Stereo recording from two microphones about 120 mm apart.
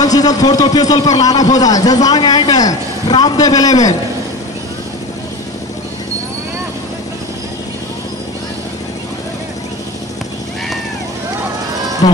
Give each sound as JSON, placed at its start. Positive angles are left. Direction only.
{"t": 0.0, "sound": "a man's voice", "side_deg": 30}
{"t": 12.0, "sound": "speech", "side_deg": 40}